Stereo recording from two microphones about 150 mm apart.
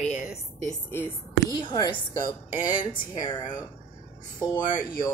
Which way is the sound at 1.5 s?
30° left (ahead or behind).